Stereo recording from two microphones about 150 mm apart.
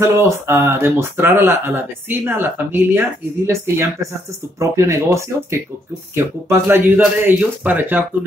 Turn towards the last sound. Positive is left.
turn(degrees=-15)  # may be behind; listen again after turning